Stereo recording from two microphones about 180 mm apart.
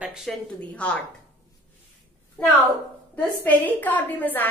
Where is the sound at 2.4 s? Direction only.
5° left (ahead or behind).